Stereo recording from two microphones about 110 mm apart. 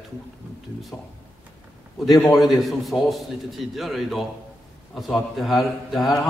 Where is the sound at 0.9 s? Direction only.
25° left (ahead or behind).